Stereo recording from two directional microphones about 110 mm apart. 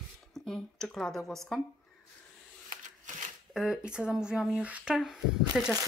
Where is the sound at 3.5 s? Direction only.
5° right (ahead or behind).